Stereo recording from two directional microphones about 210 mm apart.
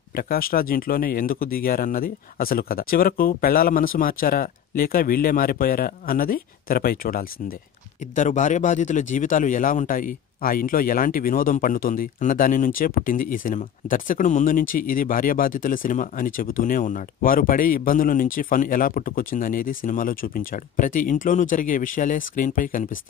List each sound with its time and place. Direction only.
0.1 s speech: 45° left (ahead or behind)